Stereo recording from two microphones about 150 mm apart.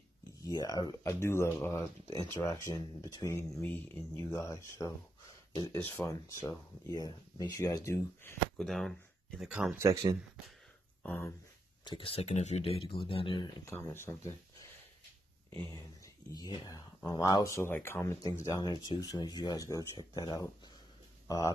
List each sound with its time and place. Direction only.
0.5 s speech: 25° left (ahead or behind)
8.5 s speech: centre (ahead or behind)
9.8 s speech: 20° right (ahead or behind)
11.0 s speech: 15° left (ahead or behind)
11.8 s speech: 35° left (ahead or behind)
13.7 s speech: 15° left (ahead or behind)
15.5 s speech: 20° left (ahead or behind)